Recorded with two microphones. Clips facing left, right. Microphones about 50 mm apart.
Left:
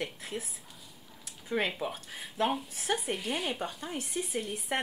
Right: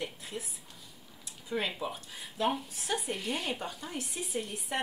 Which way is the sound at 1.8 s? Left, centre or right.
Left.